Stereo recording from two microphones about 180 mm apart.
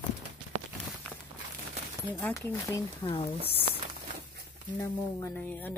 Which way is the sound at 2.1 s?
15° left (ahead or behind).